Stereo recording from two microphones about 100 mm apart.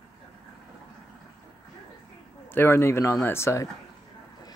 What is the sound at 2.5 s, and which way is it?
Speech, 25° left (ahead or behind).